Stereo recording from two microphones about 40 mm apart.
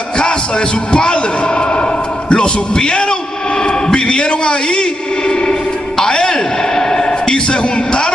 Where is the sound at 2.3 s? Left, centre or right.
Left.